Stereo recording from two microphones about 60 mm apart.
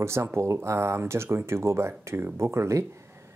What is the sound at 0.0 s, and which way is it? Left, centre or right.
Speech, right.